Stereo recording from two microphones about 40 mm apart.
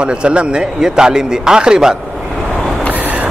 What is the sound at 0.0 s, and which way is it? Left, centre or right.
A man's voice, right.